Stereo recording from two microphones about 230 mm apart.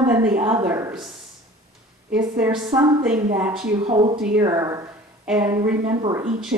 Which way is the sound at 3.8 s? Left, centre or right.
Right.